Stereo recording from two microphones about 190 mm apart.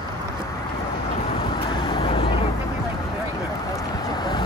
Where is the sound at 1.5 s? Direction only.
25° left (ahead or behind).